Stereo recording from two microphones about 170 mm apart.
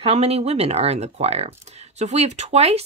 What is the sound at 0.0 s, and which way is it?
Speech, 35° right (ahead or behind).